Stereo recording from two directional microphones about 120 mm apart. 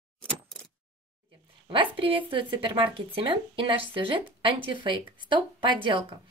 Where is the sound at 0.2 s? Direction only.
10° left (ahead or behind).